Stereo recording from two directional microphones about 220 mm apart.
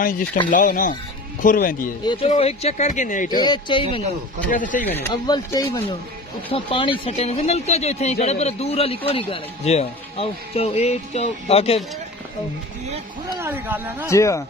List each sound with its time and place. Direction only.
0.0 s speech: 40° left (ahead or behind)
2.0 s speech: 25° left (ahead or behind)
3.3 s speech: 20° left (ahead or behind)
4.5 s speech: 35° left (ahead or behind)
4.8 s speech: 10° left (ahead or behind); by 11.8 s 25° left (ahead or behind)
13.4 s speech: 10° right (ahead or behind)
14.0 s speech: 15° left (ahead or behind)